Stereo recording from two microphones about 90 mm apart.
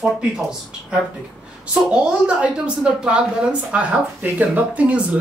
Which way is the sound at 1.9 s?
10° right (ahead or behind).